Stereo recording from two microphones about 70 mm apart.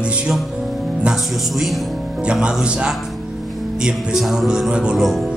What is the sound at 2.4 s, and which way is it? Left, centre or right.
Speech, centre.